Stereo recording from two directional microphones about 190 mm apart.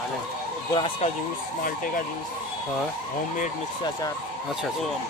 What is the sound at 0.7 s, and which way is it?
Speech, 30° left (ahead or behind).